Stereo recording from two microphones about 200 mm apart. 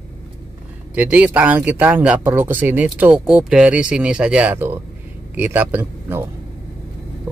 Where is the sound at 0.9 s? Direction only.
5° right (ahead or behind).